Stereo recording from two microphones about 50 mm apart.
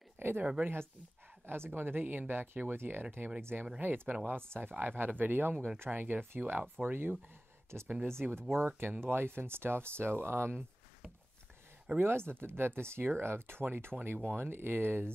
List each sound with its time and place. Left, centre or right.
0.2 s a sound: right
1.4 s speech: right
12.0 s speech: right